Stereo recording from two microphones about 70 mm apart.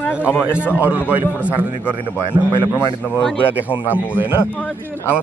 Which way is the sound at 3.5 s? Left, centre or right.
Right.